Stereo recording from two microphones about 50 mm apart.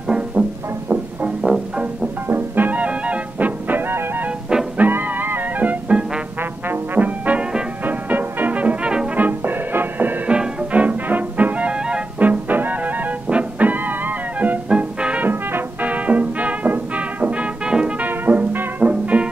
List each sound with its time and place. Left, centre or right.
0.3 s music: right
2.2 s music: right
6.7 s trombone: right
7.8 s music: right
10.2 s music: right
12.2 s music: right
14.7 s music: right
15.2 s music: right; by 18.0 s centre
18.0 s music: right
18.9 s music: right